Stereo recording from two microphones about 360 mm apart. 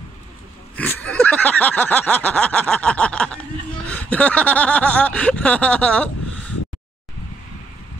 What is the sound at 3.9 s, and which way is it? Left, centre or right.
Speech, centre.